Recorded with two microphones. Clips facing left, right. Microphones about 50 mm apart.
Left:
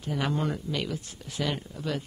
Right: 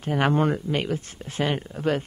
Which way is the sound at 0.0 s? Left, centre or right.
Right.